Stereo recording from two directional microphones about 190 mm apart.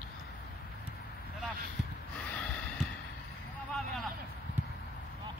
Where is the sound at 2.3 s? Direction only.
5° left (ahead or behind).